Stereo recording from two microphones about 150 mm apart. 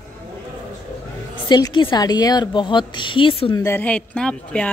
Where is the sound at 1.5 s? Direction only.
30° left (ahead or behind).